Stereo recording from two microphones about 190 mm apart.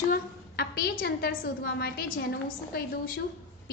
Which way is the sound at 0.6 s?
55° left (ahead or behind).